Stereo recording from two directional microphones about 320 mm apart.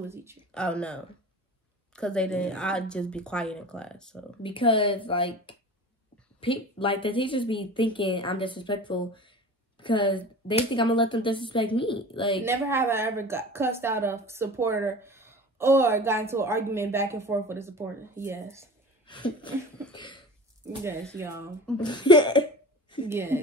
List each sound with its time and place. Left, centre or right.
0.1 s a woman's voice: centre
0.5 s speech: centre
4.4 s a woman's voice: centre
12.4 s a woman's voice: centre
19.0 s a woman's voice: centre
19.9 s a sound: centre
21.2 s a woman's voice: centre
21.8 s a woman's voice: centre
23.0 s a woman's voice: centre